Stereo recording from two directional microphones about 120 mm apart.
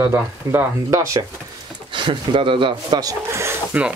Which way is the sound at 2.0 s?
45° right (ahead or behind).